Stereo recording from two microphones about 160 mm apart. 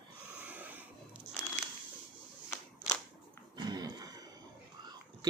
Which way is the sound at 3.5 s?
25° right (ahead or behind).